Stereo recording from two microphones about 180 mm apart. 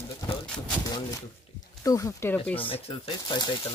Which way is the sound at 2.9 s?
30° left (ahead or behind).